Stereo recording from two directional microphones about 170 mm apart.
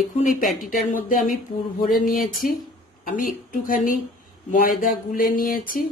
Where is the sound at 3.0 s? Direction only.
55° left (ahead or behind).